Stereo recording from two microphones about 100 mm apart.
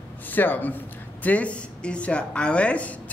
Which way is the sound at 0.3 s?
20° left (ahead or behind).